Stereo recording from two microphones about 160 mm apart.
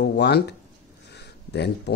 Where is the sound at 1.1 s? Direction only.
90° left.